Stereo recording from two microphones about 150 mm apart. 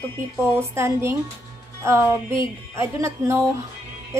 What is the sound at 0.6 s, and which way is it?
A woman's voice, 20° right (ahead or behind).